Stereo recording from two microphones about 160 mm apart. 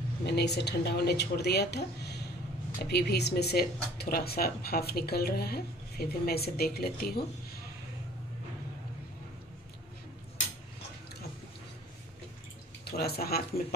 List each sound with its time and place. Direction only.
0.3 s speech: 90° left; by 7.6 s 70° left (ahead or behind)
12.9 s speech: 80° left